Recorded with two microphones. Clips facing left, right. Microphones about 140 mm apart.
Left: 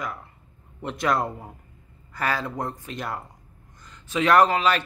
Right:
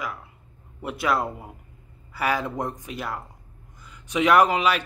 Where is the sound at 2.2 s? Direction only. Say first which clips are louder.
Right 2 dB; 15° right (ahead or behind).